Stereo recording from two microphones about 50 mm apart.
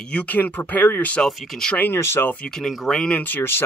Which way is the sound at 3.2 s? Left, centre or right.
Left.